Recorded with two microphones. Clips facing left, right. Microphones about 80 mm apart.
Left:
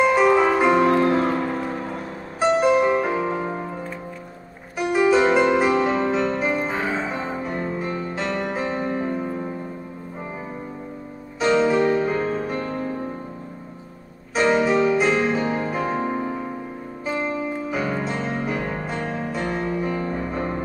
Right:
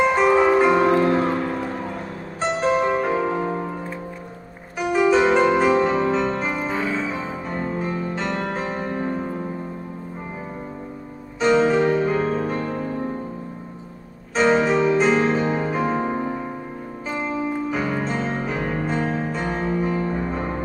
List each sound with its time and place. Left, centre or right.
0.0 s music: centre
2.4 s music: centre
4.7 s music: centre
6.8 s music: left
7.2 s music: centre
11.6 s music: centre
14.3 s music: centre
20.0 s music: centre